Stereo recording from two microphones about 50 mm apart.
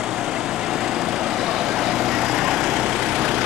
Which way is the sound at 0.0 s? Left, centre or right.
Centre.